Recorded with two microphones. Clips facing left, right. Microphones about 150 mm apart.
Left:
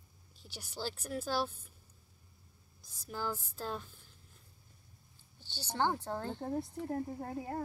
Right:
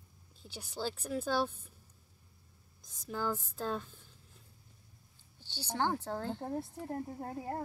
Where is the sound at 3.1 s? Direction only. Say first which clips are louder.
Right 3 dB; 5° left (ahead or behind).